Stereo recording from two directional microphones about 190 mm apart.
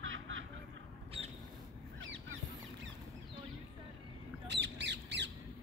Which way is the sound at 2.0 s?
90° right.